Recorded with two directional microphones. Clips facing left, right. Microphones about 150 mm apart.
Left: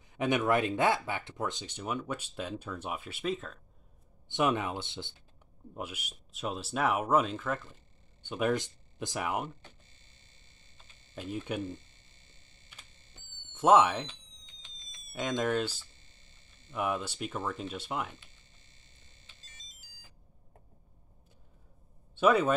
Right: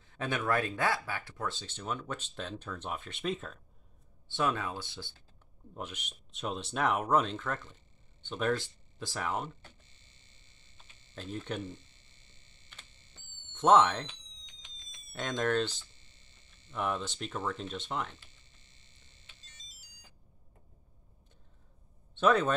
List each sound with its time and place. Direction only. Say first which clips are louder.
0.0 s speech: left 5 dB; 15° left (ahead or behind)
4.3 s speech: left 3 dB; 20° left (ahead or behind)
5.8 s speech: left 2 dB; 5° left (ahead or behind)
11.1 s speech: left 2 dB; 10° left (ahead or behind)
13.5 s speech: left 1 dB; 10° left (ahead or behind)
14.6 s a sound: left 1 dB; centre (ahead or behind)
15.1 s speech: even; 10° left (ahead or behind)
22.1 s speech: left 1 dB; 10° left (ahead or behind)